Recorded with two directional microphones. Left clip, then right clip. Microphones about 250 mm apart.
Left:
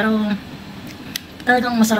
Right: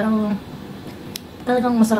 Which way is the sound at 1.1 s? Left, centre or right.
Centre.